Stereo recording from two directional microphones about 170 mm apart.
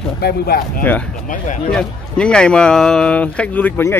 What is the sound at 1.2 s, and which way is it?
Speech, 50° left (ahead or behind).